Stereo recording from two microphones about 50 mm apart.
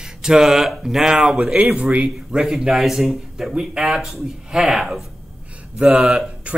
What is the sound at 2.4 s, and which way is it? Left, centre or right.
Speech, centre.